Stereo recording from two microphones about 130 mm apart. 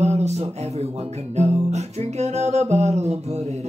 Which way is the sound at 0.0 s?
60° right (ahead or behind).